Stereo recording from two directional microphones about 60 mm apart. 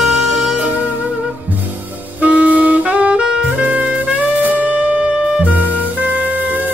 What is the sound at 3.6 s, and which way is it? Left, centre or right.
Music, right.